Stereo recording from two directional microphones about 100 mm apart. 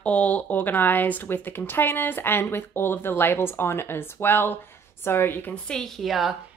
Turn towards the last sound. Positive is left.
turn(degrees=0)  # may be behind; listen again after turning